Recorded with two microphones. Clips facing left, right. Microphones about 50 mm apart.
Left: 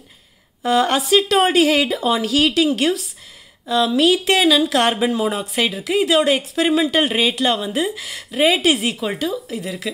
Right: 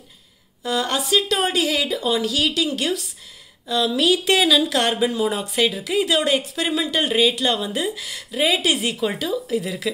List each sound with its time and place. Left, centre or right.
0.6 s speech: left
2.0 s speech: left
2.2 s speech: left
3.6 s a woman's voice: centre